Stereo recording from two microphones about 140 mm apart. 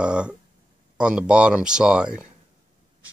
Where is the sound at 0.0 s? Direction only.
5° right (ahead or behind).